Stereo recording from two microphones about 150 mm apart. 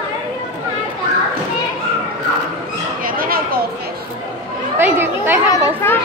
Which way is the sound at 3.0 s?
70° right (ahead or behind).